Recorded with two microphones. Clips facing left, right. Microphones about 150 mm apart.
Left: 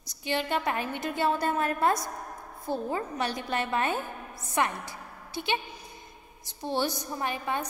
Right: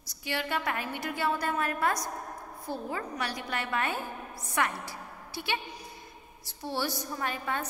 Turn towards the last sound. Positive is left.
turn(degrees=20)  # may be behind; listen again after turning